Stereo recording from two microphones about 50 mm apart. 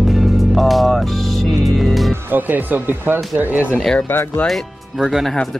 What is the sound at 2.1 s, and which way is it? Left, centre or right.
Speech, right.